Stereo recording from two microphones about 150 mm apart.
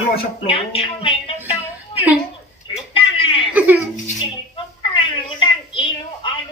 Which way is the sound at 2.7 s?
35° left (ahead or behind).